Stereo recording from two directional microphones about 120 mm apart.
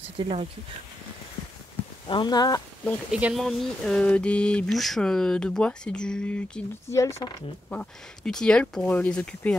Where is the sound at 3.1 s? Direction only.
5° right (ahead or behind).